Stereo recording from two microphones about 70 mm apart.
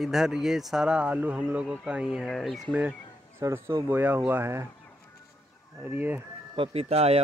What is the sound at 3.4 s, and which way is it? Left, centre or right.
Speech, right.